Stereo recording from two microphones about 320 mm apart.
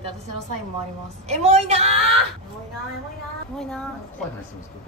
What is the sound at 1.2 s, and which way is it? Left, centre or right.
Speech, right.